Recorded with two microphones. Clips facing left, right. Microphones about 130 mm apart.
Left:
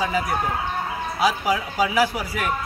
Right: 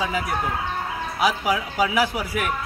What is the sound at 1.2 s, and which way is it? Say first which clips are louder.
Speech: even; 15° right (ahead or behind).